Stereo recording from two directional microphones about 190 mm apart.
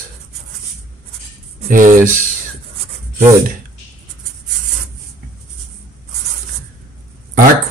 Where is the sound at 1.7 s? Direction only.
45° right (ahead or behind).